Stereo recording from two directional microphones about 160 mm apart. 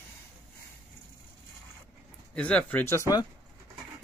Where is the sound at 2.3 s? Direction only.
5° left (ahead or behind).